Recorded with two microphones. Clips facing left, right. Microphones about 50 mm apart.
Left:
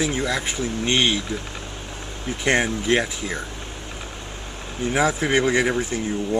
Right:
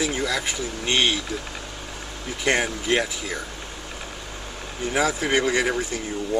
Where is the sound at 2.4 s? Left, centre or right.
Left.